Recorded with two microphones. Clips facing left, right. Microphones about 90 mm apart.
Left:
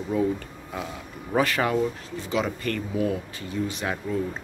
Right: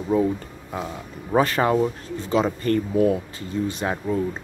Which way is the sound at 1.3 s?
30° right (ahead or behind).